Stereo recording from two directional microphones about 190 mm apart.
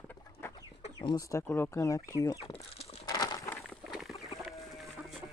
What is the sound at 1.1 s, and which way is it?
Speech, 15° left (ahead or behind).